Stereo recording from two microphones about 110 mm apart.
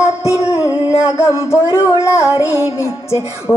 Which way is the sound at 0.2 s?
25° left (ahead or behind).